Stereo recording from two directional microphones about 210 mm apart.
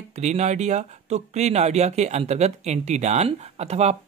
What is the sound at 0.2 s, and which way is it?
Speech, 35° right (ahead or behind).